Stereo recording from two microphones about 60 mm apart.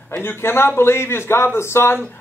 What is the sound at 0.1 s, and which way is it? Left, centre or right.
A man's voice, left.